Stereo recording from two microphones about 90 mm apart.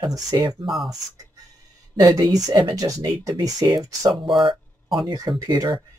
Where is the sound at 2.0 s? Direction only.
45° right (ahead or behind).